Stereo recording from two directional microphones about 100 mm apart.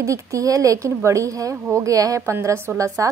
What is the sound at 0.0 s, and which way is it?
Speech, 35° right (ahead or behind).